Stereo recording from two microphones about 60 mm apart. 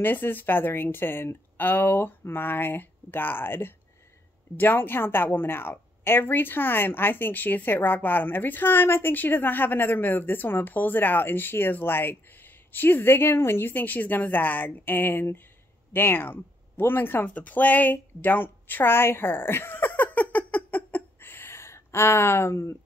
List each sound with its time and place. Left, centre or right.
0.0 s a woman's voice: left
17.3 s a woman's voice: left
17.9 s a sound: left